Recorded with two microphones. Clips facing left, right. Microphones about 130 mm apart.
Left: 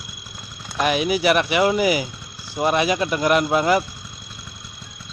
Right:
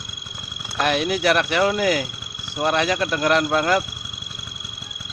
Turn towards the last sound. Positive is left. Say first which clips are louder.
# left 1 dB
turn(degrees=10)  # may be behind; listen again after turning